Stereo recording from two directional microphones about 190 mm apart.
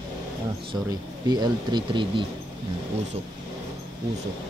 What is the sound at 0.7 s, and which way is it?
Speech, 20° right (ahead or behind).